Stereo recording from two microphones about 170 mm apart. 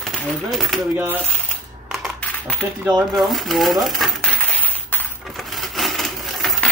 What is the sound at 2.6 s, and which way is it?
Speech, 15° right (ahead or behind).